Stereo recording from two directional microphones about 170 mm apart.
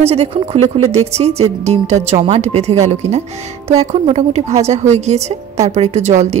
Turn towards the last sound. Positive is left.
turn(degrees=-40)  # may be behind; listen again after turning